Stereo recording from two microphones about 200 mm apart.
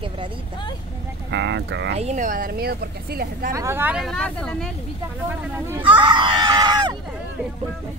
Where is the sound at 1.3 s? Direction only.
60° right (ahead or behind).